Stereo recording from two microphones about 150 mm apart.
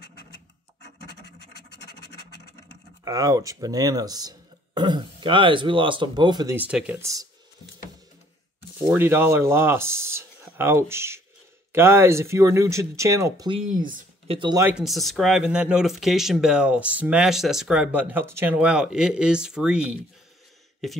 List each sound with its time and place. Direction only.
3.1 s speech: 20° right (ahead or behind)
6.5 s speech: 10° right (ahead or behind)
7.0 s speech: 20° right (ahead or behind)
8.9 s speech: 15° right (ahead or behind)
13.7 s speech: 65° right (ahead or behind)
14.2 s speech: 40° right (ahead or behind)
14.7 s speech: centre (ahead or behind)